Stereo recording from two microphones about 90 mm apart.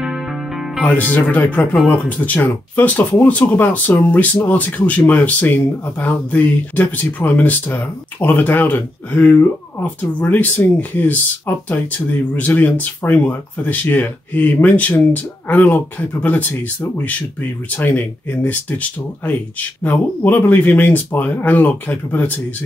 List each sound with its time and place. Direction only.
0.8 s speech: 20° left (ahead or behind)